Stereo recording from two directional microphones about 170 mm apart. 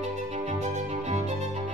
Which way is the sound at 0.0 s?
45° right (ahead or behind).